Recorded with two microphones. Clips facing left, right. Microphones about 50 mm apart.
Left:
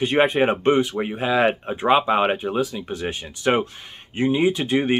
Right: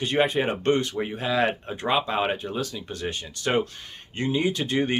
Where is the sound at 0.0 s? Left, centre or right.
Centre.